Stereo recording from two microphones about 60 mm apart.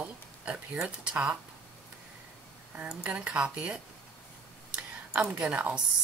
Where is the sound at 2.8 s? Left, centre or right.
Centre.